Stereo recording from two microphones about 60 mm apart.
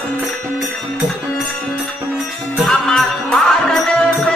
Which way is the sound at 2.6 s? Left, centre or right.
Centre.